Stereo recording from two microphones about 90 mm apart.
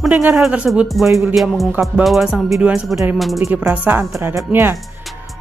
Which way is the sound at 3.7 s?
15° right (ahead or behind).